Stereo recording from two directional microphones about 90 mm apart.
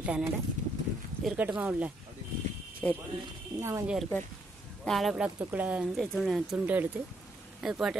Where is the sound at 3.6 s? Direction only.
30° right (ahead or behind).